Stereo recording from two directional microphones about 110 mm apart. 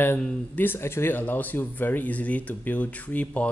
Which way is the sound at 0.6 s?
20° left (ahead or behind).